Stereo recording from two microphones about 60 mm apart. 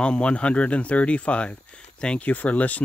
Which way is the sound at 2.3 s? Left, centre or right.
Left.